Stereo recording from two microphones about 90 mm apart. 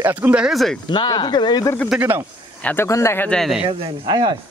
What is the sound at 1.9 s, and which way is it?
Speech, 25° right (ahead or behind).